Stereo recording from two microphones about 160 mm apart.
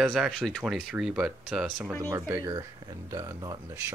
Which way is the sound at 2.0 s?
20° right (ahead or behind).